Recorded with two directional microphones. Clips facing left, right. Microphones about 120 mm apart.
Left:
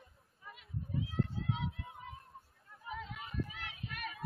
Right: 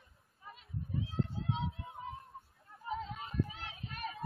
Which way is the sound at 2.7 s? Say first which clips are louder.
Right 5 dB; 30° right (ahead or behind).